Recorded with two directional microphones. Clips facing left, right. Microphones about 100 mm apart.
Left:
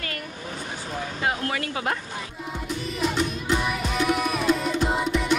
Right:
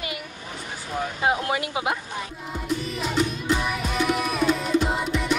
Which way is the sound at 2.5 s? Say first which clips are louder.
Right 3 dB; centre (ahead or behind).